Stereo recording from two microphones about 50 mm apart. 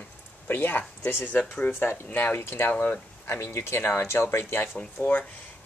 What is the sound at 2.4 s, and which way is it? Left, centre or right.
Speech, left.